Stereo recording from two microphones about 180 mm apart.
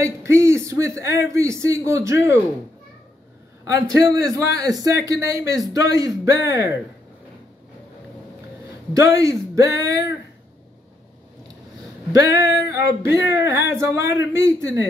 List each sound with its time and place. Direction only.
0.0 s a man's voice: 15° right (ahead or behind)
3.7 s speech: 20° right (ahead or behind)
8.9 s speech: 20° right (ahead or behind)
12.1 s speech: 15° right (ahead or behind)